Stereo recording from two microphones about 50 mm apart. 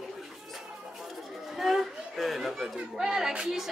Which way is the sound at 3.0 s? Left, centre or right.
Centre.